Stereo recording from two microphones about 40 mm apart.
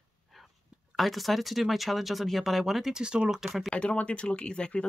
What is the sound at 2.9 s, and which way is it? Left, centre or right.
Speech, right.